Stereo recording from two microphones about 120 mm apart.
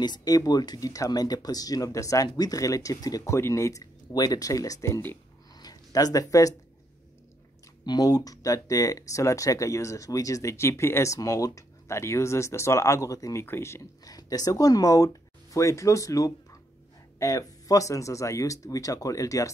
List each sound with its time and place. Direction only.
0.0 s speech: 35° left (ahead or behind)
5.6 s a sound: 30° left (ahead or behind)
7.8 s speech: 35° left (ahead or behind)